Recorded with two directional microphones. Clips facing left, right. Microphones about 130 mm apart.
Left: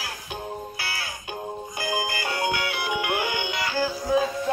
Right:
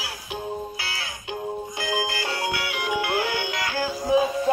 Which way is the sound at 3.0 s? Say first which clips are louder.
Right 1 dB; 15° left (ahead or behind).